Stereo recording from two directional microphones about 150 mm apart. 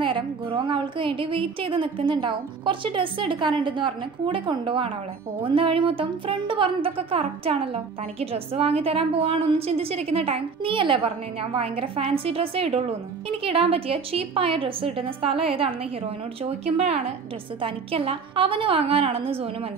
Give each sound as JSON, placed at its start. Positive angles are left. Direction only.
{"t": 0.0, "sound": "speech", "side_deg": -35}